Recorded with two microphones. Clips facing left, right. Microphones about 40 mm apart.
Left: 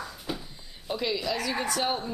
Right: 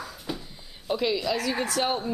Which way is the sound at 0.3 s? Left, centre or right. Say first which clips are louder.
Right 1 dB; centre.